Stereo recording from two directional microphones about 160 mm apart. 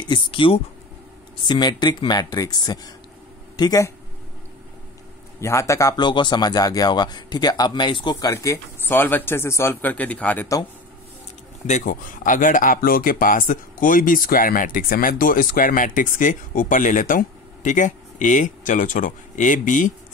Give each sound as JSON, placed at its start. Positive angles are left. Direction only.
{"t": 0.0, "sound": "speech", "side_deg": 30}
{"t": 5.4, "sound": "speech", "side_deg": 20}
{"t": 11.6, "sound": "speech", "side_deg": 50}